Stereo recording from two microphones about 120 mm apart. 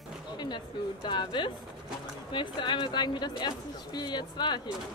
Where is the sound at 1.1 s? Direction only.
40° left (ahead or behind).